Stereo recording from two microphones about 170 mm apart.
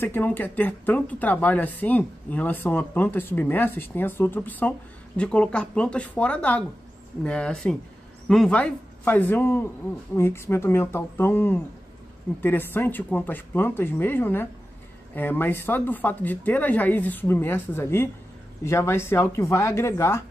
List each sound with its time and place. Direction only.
0.0 s speech: 10° left (ahead or behind)